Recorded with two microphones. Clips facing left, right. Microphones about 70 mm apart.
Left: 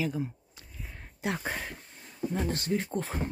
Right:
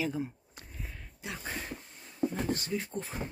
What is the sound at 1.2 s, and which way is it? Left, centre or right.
Speech, left.